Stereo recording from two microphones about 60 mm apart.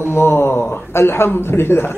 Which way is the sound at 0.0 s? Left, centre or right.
Left.